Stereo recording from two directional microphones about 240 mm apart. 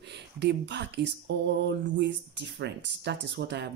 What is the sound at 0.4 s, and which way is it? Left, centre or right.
Speech, right.